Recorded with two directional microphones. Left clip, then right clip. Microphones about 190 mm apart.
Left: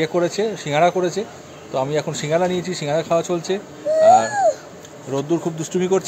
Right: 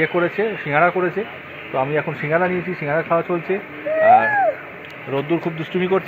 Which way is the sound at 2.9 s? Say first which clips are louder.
Even; 10° left (ahead or behind).